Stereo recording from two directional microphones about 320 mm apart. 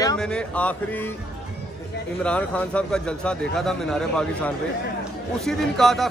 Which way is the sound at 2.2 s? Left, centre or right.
Centre.